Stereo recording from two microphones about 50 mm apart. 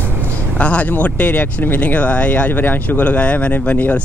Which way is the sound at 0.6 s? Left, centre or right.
Left.